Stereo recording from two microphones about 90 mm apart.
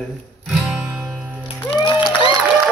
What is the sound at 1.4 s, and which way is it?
Music, 70° left (ahead or behind).